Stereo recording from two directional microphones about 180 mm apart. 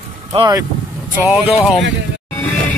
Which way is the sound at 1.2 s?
5° right (ahead or behind).